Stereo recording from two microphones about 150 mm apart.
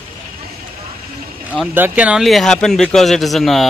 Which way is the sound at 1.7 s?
10° right (ahead or behind).